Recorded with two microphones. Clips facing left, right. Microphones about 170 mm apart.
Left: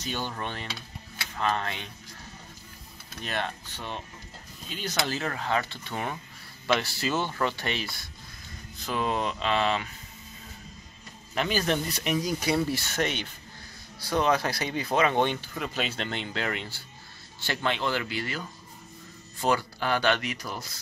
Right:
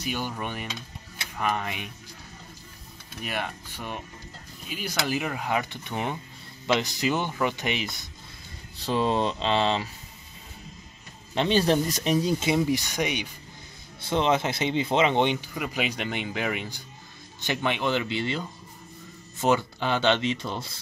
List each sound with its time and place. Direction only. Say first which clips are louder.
0.0 s speech: right 2 dB; 10° right (ahead or behind)
3.2 s speech: even; 10° right (ahead or behind)
8.7 s speech: right 4 dB; 30° right (ahead or behind)
11.3 s speech: right 5 dB; 30° right (ahead or behind); by 13.3 s 15° right (ahead or behind)
13.9 s speech: right 1 dB; 25° right (ahead or behind)